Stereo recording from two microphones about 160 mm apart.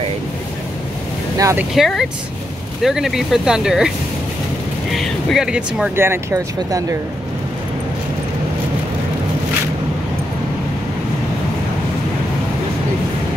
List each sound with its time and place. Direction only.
1.4 s speech: 15° right (ahead or behind)
1.8 s speech: centre (ahead or behind)
4.9 s speech: centre (ahead or behind)
5.9 s speech: 20° right (ahead or behind)